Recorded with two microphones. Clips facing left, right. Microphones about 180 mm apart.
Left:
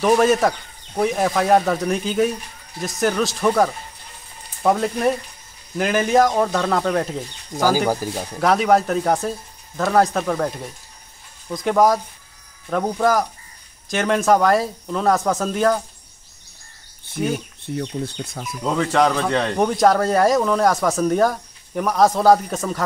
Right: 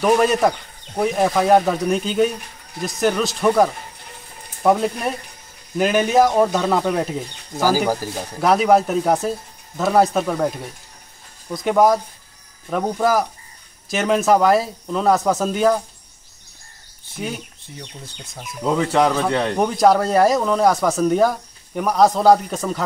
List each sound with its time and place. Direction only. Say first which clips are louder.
0.0 s speech: even; centre (ahead or behind)
8.4 s speech: right 2 dB; centre (ahead or behind)
11.5 s speech: right 1 dB; centre (ahead or behind)
17.7 s speech: left 12 dB; 60° left (ahead or behind)
18.6 s speech: right 1 dB; 5° right (ahead or behind)